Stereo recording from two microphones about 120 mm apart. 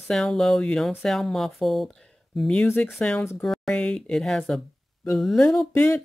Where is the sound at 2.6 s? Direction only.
15° left (ahead or behind); by 5.7 s centre (ahead or behind).